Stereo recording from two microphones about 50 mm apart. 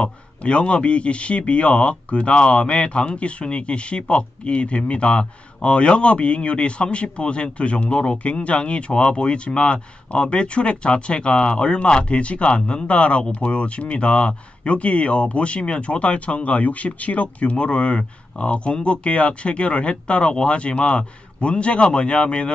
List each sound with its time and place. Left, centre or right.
0.0 s a man's voice: left